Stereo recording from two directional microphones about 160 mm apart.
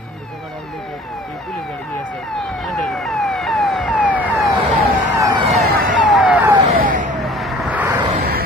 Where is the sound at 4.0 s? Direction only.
10° right (ahead or behind).